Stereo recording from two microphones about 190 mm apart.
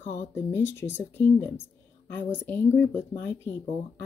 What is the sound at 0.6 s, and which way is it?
Speech, 70° left (ahead or behind).